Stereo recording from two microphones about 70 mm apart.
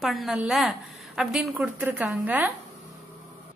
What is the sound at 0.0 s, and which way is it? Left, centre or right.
A woman's voice, centre.